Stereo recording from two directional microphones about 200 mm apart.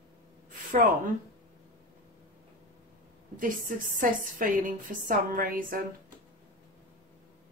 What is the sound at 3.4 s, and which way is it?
A woman's voice, 45° right (ahead or behind).